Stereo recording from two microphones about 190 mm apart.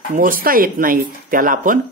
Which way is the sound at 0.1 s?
45° right (ahead or behind).